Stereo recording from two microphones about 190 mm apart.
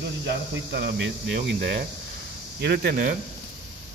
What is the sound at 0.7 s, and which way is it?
Speech, 60° right (ahead or behind).